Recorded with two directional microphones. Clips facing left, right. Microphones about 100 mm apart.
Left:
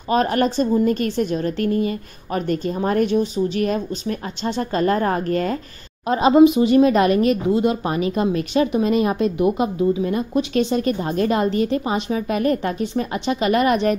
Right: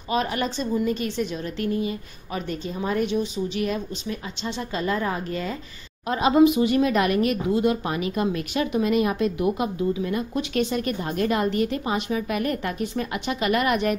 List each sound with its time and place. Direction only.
0.1 s a woman's voice: 45° left (ahead or behind)
6.0 s speech: 30° left (ahead or behind)